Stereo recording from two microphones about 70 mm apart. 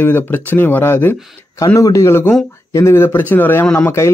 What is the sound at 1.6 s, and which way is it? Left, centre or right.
Speech, left.